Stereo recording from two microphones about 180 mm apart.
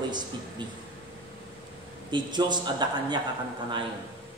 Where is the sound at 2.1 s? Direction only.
25° right (ahead or behind).